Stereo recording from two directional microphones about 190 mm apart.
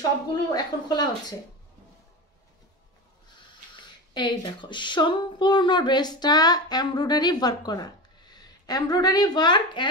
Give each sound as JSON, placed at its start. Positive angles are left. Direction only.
{"t": 0.3, "sound": "speech", "side_deg": 20}
{"t": 4.1, "sound": "speech", "side_deg": 25}